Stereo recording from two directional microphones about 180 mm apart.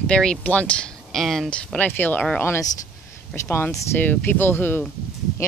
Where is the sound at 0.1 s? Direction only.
5° left (ahead or behind).